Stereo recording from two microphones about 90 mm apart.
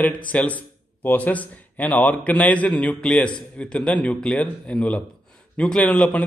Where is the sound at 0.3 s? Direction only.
15° left (ahead or behind).